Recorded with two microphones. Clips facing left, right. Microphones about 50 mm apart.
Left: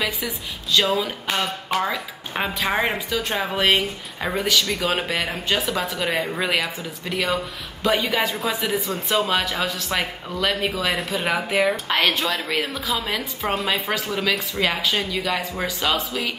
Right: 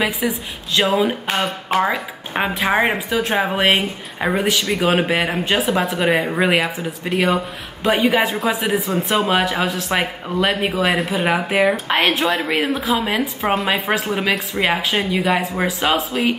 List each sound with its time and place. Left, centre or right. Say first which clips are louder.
0.7 s speech: right 4 dB; right
7.1 s speech: right 5 dB; centre
7.8 s speech: right 5 dB; right